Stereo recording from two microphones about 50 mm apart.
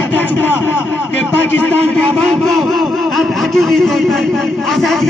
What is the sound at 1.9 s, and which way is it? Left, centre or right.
Speech, left.